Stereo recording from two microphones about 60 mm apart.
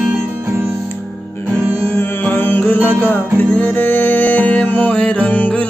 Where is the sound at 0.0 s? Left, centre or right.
Right.